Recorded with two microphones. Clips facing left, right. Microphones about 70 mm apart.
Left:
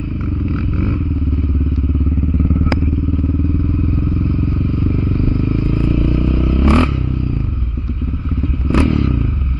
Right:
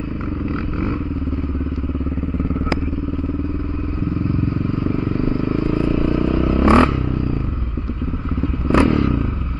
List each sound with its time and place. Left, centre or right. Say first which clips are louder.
0.5 s vehicle: left 2 dB; right
4.8 s vehicle: left 1 dB; right
8.6 s motorcycle: right 1 dB; right
8.9 s vehicle: even; right